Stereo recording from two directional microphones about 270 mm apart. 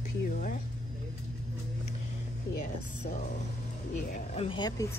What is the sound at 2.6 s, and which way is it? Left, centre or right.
Speech, left.